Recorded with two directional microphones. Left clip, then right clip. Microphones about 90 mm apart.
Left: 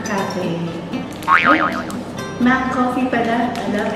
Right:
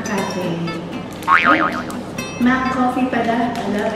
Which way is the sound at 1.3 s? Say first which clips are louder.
Even; 5° right (ahead or behind).